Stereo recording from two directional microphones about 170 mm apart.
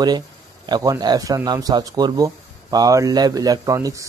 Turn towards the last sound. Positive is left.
turn(degrees=-20)  # may be behind; listen again after turning